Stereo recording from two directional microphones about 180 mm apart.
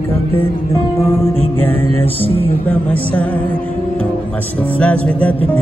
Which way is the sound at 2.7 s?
10° left (ahead or behind).